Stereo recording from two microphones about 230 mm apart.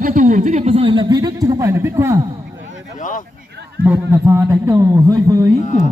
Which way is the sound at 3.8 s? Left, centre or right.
Centre.